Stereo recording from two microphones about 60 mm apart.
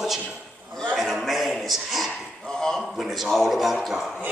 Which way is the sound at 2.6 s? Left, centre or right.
Centre.